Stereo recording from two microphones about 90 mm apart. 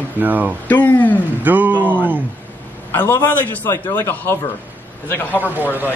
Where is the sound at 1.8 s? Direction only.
20° right (ahead or behind).